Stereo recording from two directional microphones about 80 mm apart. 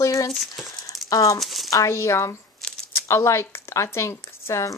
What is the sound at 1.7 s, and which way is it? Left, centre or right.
Speech, left.